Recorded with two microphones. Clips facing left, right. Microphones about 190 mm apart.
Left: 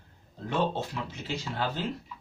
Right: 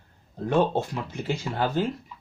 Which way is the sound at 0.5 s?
50° right (ahead or behind).